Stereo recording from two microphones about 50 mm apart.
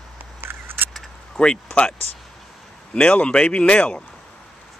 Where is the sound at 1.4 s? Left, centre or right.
Centre.